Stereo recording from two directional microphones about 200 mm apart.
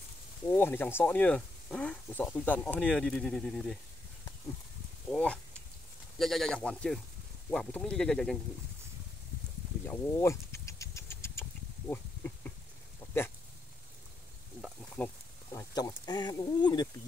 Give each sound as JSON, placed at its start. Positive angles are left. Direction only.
{"t": 0.5, "sound": "speech", "side_deg": 10}
{"t": 5.1, "sound": "speech", "side_deg": 5}
{"t": 9.8, "sound": "vehicle", "side_deg": 15}
{"t": 11.9, "sound": "a sound", "side_deg": 10}
{"t": 14.6, "sound": "a sound", "side_deg": 0}
{"t": 15.5, "sound": "speech", "side_deg": 15}